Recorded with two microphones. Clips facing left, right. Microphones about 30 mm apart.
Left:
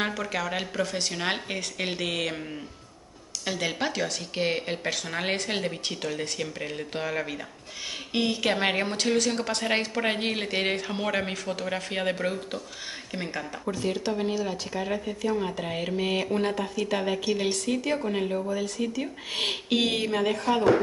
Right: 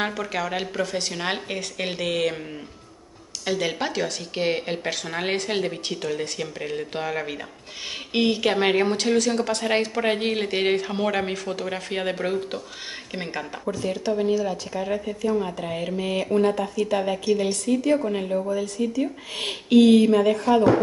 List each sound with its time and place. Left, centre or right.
0.0 s a woman's voice: centre
8.1 s a woman's voice: right
8.4 s a woman's voice: centre
13.7 s speech: centre